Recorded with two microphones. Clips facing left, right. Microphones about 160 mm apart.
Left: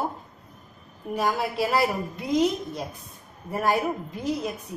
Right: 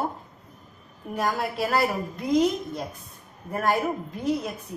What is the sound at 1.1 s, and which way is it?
Speech, 5° left (ahead or behind).